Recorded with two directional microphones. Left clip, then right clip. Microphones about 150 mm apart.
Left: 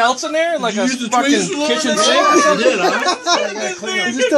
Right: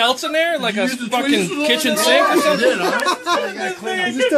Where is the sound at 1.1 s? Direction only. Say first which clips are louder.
Left 3 dB; 35° right (ahead or behind).